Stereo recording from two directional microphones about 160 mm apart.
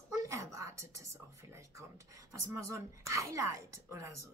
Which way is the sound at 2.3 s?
20° right (ahead or behind).